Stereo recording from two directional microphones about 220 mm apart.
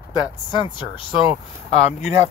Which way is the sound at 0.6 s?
20° left (ahead or behind).